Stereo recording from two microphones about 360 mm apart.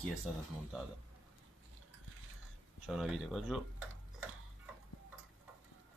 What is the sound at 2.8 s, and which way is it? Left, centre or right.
Speech, centre.